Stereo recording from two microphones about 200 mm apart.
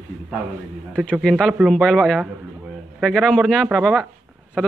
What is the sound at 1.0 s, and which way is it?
Speech, centre (ahead or behind).